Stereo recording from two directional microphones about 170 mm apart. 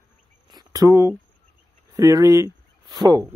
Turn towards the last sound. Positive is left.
turn(degrees=-25)  # may be behind; listen again after turning